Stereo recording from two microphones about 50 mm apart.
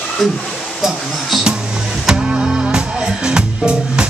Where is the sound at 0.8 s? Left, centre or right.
Centre.